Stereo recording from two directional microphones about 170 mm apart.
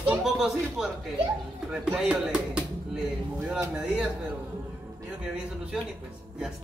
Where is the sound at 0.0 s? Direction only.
5° right (ahead or behind).